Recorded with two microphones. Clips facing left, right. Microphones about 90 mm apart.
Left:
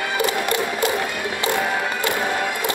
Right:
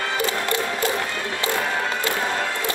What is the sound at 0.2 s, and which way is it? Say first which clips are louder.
Music: left 4 dB; 15° left (ahead or behind).